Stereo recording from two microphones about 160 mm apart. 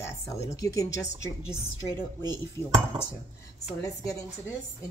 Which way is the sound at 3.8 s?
20° left (ahead or behind).